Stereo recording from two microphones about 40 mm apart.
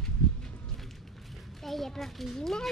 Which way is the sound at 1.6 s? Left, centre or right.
Centre.